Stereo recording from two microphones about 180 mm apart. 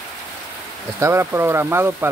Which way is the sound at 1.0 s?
15° right (ahead or behind).